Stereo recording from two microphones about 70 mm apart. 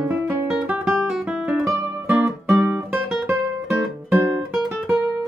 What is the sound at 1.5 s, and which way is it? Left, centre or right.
Music, centre.